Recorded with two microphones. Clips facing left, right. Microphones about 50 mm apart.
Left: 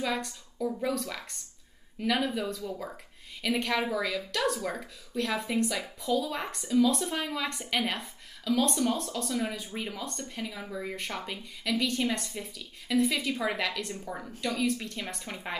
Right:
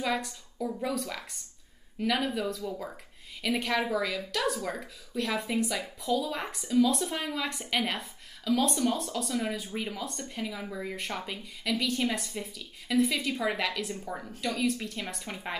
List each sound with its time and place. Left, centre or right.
0.0 s a woman's voice: centre